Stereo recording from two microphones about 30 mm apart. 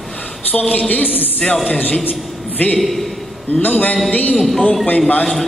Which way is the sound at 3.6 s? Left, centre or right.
Left.